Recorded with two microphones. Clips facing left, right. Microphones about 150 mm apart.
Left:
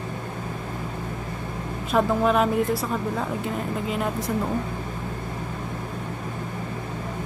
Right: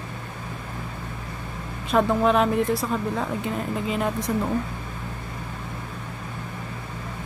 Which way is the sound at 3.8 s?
Centre (ahead or behind).